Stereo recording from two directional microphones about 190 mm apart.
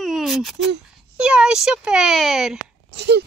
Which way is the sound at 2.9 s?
65° right (ahead or behind).